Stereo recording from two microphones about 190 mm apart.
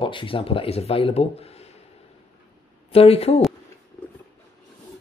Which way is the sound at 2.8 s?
30° left (ahead or behind).